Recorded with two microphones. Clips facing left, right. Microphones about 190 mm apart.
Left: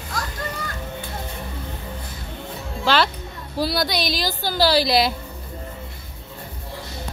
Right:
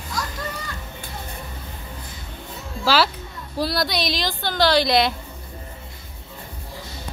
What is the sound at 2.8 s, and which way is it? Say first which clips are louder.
A woman's voice: even; 5° right (ahead or behind).